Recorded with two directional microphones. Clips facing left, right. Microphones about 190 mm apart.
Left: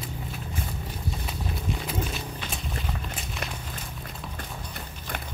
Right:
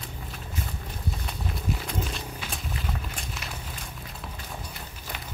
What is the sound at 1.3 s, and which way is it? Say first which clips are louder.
Walk: right 1 dB; 5° left (ahead or behind).